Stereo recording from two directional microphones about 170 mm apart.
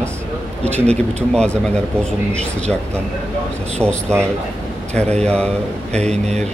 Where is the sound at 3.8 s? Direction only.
5° left (ahead or behind).